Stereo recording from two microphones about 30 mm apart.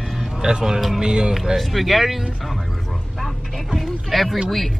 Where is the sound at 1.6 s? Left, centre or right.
Centre.